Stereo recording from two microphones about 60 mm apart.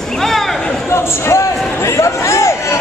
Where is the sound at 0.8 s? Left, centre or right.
Left.